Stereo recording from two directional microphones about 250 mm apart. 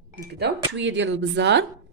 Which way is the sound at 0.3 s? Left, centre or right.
Right.